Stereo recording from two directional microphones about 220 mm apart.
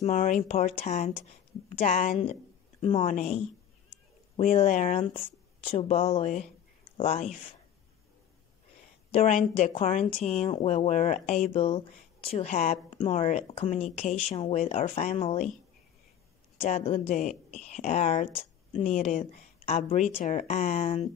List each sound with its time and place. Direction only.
0.0 s a woman's voice: 35° left (ahead or behind)
4.4 s a woman's voice: 35° left (ahead or behind)
9.1 s speech: 30° left (ahead or behind)
16.6 s a woman's voice: 30° left (ahead or behind)